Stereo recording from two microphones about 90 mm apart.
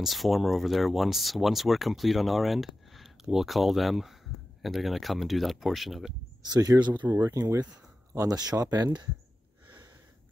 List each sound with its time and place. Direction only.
0.0 s speech: centre (ahead or behind)
6.5 s speech: 45° right (ahead or behind)